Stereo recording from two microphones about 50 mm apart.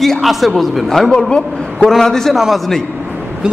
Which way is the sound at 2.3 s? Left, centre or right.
Centre.